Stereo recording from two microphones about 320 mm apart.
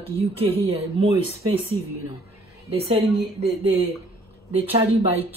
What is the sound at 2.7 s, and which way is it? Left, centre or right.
A woman's voice, centre.